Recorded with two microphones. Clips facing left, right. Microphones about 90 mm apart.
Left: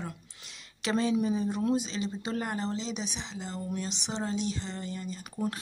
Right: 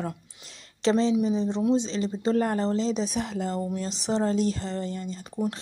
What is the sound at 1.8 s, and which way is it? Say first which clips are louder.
Speech: right 5 dB; 35° right (ahead or behind).